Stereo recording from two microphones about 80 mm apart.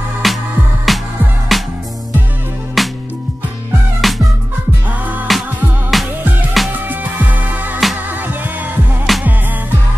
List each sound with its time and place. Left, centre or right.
0.2 s music: centre
2.8 s music: centre
4.0 s music: centre
5.3 s music: centre
6.9 s music: right
9.1 s music: centre